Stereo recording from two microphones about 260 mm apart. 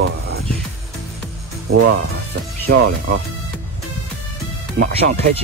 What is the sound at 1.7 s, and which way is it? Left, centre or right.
Speech, right.